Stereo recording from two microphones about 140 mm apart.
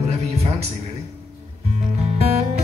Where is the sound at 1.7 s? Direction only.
50° right (ahead or behind).